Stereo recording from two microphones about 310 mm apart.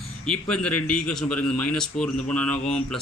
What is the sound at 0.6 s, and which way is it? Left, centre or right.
Speech, left.